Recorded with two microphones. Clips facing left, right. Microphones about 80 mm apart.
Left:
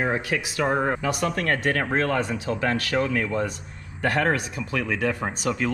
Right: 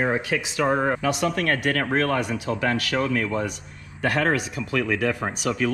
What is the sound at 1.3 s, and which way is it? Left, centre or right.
Speech, left.